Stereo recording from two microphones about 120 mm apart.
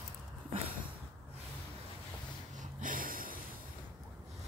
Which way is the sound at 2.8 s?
90° right.